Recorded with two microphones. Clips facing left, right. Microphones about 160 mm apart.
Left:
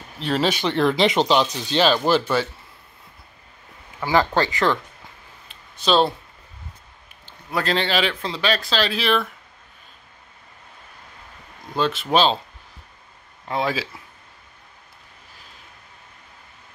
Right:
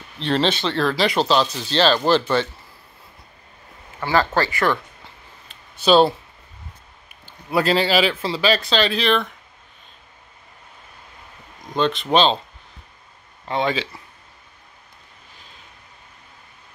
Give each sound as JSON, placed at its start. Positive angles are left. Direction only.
{"t": 0.2, "sound": "speech", "side_deg": 5}
{"t": 4.0, "sound": "speech", "side_deg": 15}
{"t": 5.5, "sound": "a sound", "side_deg": -5}
{"t": 7.2, "sound": "a man's voice", "side_deg": -10}
{"t": 11.7, "sound": "a man's voice", "side_deg": 5}
{"t": 13.5, "sound": "a man's voice", "side_deg": 0}